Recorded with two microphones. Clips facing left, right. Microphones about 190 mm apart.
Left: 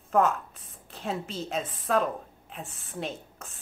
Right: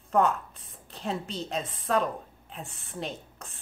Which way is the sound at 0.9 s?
Centre (ahead or behind).